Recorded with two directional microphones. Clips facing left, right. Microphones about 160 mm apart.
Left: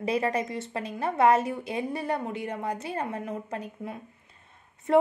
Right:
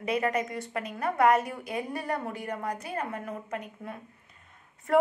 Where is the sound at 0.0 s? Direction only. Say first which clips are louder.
Left 1 dB; 30° left (ahead or behind).